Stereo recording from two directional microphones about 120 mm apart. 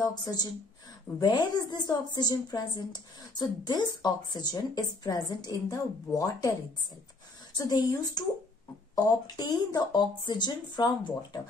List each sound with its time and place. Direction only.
0.0 s a woman's voice: 35° left (ahead or behind)
7.5 s a woman's voice: 30° left (ahead or behind)